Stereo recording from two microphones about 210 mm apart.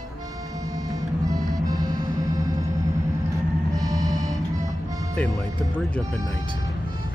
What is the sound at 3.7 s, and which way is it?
Music, 15° right (ahead or behind).